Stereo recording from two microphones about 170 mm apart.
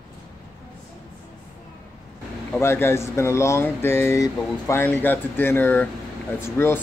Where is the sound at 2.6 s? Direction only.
15° left (ahead or behind).